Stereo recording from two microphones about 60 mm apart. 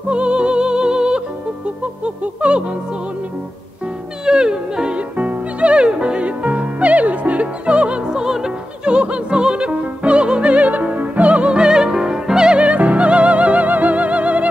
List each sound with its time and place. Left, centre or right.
0.1 s music: centre
2.0 s a sound: centre
4.3 s music: centre